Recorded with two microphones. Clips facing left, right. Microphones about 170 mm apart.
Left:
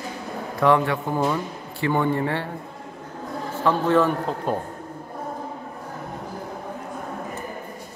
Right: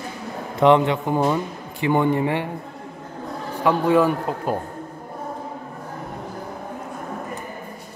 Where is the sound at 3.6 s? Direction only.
10° right (ahead or behind).